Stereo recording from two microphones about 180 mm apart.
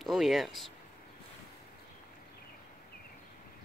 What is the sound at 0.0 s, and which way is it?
Speech, centre (ahead or behind).